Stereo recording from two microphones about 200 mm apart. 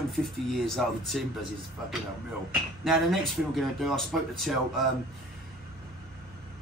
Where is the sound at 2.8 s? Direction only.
Centre (ahead or behind).